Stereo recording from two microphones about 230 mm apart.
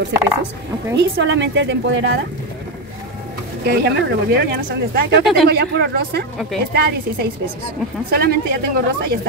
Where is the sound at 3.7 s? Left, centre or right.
Right.